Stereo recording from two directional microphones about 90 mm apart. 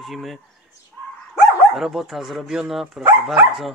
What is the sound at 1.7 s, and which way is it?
Speech, centre (ahead or behind).